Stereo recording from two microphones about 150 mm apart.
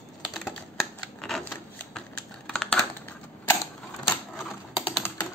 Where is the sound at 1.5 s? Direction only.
10° left (ahead or behind).